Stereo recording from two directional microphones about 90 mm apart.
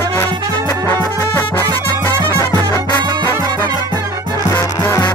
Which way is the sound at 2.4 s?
35° left (ahead or behind).